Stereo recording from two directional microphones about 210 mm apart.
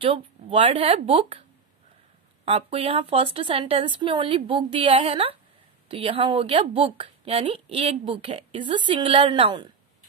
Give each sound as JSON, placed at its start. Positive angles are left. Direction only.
{"t": 0.0, "sound": "a woman's voice", "side_deg": -25}
{"t": 2.4, "sound": "a woman's voice", "side_deg": -30}